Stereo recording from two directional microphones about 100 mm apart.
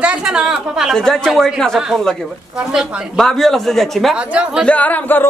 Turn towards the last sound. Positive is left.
turn(degrees=20)  # may be behind; listen again after turning